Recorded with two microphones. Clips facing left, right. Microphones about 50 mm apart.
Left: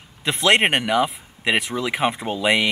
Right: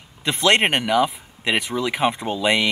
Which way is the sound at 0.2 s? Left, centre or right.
Centre.